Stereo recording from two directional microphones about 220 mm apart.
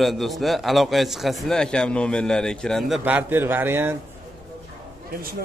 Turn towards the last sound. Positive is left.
turn(degrees=-10)  # may be behind; listen again after turning